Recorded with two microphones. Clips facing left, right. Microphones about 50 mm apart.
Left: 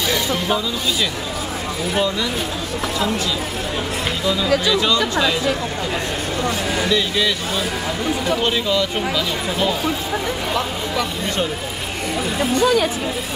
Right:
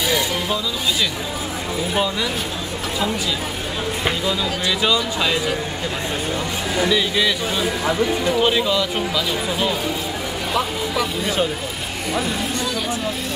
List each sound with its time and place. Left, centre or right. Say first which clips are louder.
4.6 s speech: left 2 dB; centre
6.7 s speech: right 4 dB; centre
12.6 s speech: left 8 dB; left